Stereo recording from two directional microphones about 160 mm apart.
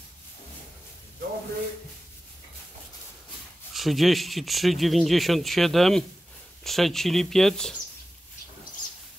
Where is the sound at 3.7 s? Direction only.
Centre (ahead or behind).